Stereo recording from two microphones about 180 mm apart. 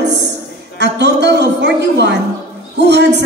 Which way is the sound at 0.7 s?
70° right (ahead or behind).